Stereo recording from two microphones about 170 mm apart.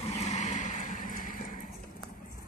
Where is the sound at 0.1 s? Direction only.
40° left (ahead or behind).